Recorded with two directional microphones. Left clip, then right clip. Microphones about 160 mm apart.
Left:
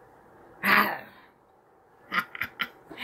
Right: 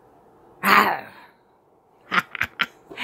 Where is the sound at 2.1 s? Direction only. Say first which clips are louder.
Right 7 dB; 60° right (ahead or behind).